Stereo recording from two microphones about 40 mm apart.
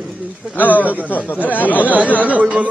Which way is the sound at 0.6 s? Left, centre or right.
Left.